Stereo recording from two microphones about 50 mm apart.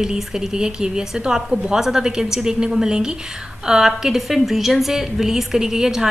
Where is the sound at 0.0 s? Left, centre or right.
Centre.